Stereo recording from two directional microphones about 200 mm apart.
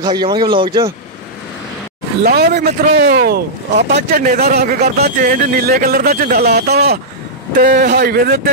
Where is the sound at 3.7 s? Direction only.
35° right (ahead or behind).